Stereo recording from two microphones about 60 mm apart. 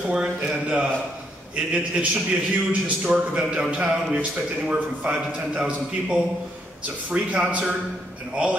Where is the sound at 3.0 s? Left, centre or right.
Centre.